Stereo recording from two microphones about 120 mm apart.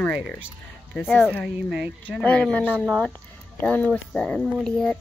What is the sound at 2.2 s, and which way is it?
Speech, 10° left (ahead or behind).